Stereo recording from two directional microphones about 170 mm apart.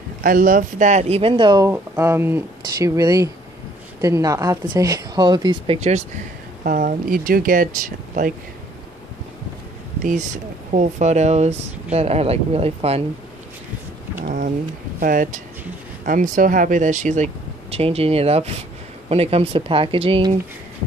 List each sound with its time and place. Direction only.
0.2 s speech: 55° right (ahead or behind); by 5.8 s 25° right (ahead or behind)
5.8 s speech: 40° right (ahead or behind)
6.6 s speech: 55° right (ahead or behind)
10.0 s speech: 50° right (ahead or behind)
14.2 s speech: 55° right (ahead or behind); by 20.2 s 30° right (ahead or behind)